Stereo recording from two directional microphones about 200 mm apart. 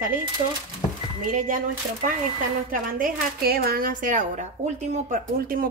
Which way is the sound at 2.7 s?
45° right (ahead or behind).